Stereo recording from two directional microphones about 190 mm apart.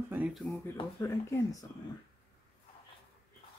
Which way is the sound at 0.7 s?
15° left (ahead or behind).